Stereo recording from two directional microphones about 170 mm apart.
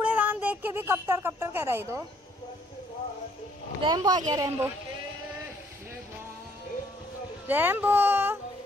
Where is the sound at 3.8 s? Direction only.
25° right (ahead or behind).